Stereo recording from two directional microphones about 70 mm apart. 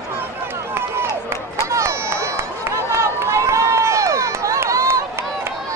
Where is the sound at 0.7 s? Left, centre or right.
Right.